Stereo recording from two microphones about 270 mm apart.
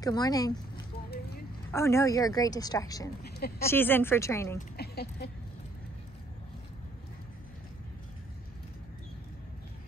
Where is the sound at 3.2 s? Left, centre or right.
Left.